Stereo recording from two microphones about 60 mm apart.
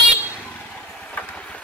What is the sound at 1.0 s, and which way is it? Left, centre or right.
Train, left.